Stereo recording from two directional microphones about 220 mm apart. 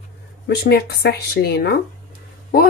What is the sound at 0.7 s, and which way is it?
Speech, 45° left (ahead or behind).